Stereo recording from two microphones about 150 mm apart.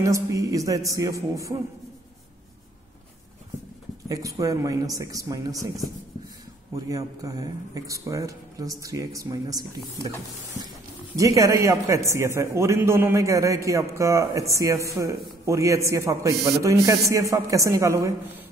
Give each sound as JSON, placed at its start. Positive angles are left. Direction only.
{"t": 0.0, "sound": "a man's voice", "side_deg": -20}
{"t": 4.1, "sound": "a man's voice", "side_deg": -20}
{"t": 11.1, "sound": "a man's voice", "side_deg": -20}